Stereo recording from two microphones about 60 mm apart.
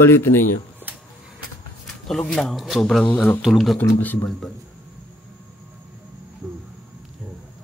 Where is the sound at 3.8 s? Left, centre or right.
Left.